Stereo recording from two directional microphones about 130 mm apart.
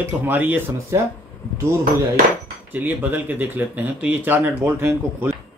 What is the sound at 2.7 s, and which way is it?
Speech, 15° right (ahead or behind).